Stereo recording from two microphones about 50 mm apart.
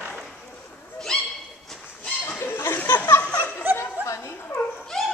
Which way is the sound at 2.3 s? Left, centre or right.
Left.